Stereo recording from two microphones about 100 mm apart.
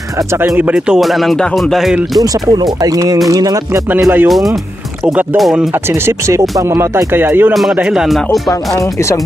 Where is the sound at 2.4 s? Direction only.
40° right (ahead or behind).